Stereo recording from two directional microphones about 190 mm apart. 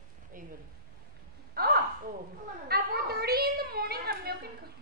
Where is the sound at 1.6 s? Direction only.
55° right (ahead or behind).